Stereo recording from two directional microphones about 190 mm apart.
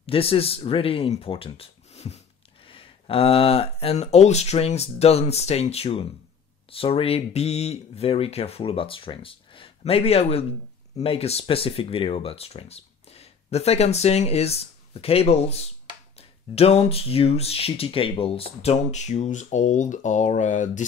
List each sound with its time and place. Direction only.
0.0 s speech: 30° left (ahead or behind)